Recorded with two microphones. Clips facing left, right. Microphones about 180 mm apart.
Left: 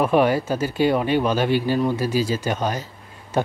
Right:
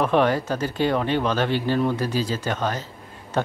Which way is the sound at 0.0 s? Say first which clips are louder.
Left 2 dB; 10° left (ahead or behind).